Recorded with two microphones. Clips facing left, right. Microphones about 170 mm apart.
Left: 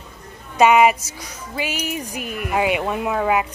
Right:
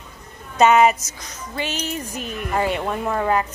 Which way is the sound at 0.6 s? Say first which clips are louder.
Left 1 dB; 10° left (ahead or behind).